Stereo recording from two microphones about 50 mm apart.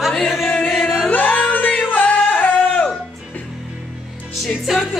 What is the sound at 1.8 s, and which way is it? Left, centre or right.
Music, left.